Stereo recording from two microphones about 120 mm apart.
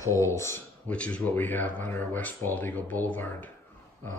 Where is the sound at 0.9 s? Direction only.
10° left (ahead or behind).